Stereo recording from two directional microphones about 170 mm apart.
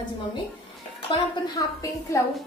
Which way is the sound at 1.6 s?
20° left (ahead or behind).